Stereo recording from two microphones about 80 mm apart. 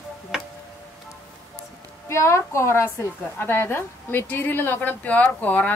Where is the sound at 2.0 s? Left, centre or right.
Left.